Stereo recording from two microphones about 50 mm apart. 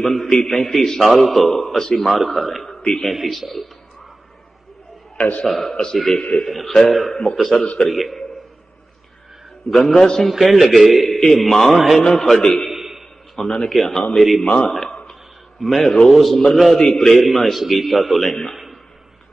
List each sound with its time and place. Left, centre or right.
0.0 s a man's voice: centre
0.3 s a man's voice: centre
5.1 s a sound: left
5.5 s a man's voice: centre
9.7 s a man's voice: centre
10.5 s a man's voice: centre
11.1 s a man's voice: centre
12.7 s a sound: centre
13.5 s a man's voice: centre
14.7 s a man's voice: centre
16.7 s a man's voice: centre